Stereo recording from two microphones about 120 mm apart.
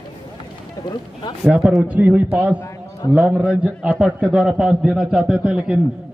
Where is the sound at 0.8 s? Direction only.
30° left (ahead or behind).